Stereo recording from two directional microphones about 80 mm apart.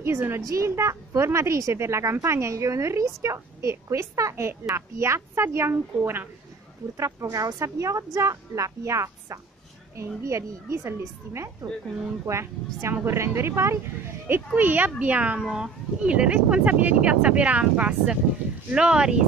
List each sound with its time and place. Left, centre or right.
0.0 s a woman's voice: right; by 19.1 s centre